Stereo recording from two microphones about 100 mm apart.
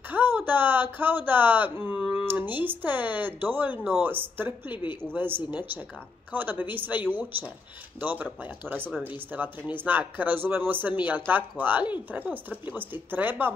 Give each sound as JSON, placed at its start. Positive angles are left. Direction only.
{"t": 0.1, "sound": "speech", "side_deg": -20}